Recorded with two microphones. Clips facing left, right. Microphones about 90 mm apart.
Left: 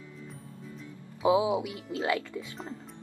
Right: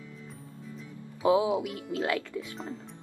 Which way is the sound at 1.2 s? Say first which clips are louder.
Even; 15° left (ahead or behind).